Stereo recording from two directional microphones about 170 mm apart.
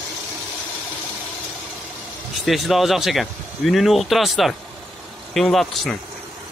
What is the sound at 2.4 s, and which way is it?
Speech, centre (ahead or behind).